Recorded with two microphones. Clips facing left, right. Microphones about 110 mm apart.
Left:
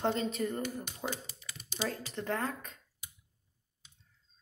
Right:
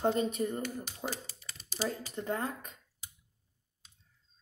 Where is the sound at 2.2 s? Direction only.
20° right (ahead or behind).